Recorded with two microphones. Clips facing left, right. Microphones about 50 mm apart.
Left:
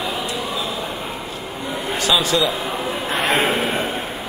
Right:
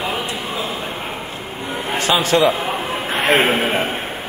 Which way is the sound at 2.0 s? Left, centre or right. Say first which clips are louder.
Right 3 dB; right.